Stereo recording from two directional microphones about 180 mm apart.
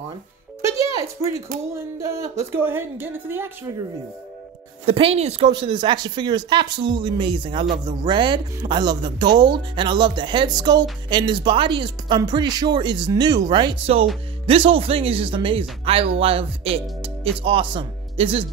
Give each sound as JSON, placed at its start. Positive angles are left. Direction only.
{"t": 0.6, "sound": "music", "side_deg": -15}
{"t": 0.9, "sound": "speech", "side_deg": -15}
{"t": 4.8, "sound": "speech", "side_deg": -30}